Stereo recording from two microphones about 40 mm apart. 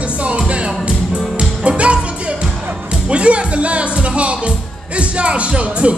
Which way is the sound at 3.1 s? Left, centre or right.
Right.